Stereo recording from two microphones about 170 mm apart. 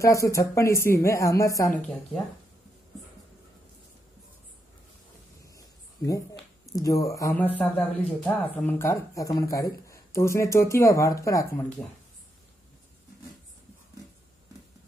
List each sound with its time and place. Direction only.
0.0 s speech: 20° left (ahead or behind)
5.4 s a sound: 20° left (ahead or behind)
6.6 s speech: 20° left (ahead or behind)